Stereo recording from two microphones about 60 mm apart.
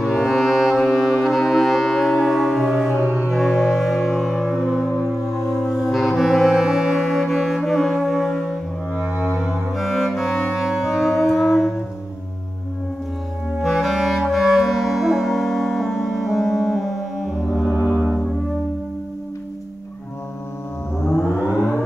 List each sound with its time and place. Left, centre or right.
0.0 s music: centre
5.7 s saxophone: centre
8.9 s music: right
9.3 s music: centre
13.5 s clarinet: centre
17.8 s music: centre
21.5 s civil defense siren: left